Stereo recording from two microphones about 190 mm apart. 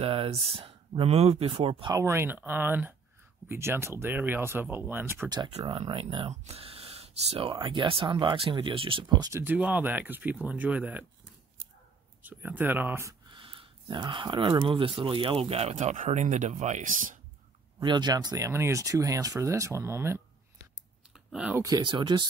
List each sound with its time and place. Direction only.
0.0 s speech: 30° right (ahead or behind); by 5.4 s 15° right (ahead or behind)
5.4 s speech: 25° right (ahead or behind)
9.4 s speech: 10° right (ahead or behind)
12.2 s speech: 10° right (ahead or behind)
13.3 s speech: 25° right (ahead or behind); by 17.2 s 45° right (ahead or behind)
17.7 s speech: 20° right (ahead or behind)
21.3 s speech: 5° right (ahead or behind)
21.6 s speech: 20° right (ahead or behind)